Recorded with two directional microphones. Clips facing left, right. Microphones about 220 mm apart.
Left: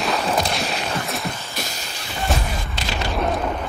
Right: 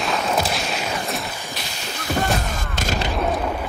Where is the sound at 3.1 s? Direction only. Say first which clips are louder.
Left 3 dB; centre (ahead or behind).